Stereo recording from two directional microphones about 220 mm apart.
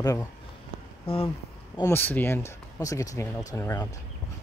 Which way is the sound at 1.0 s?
25° left (ahead or behind).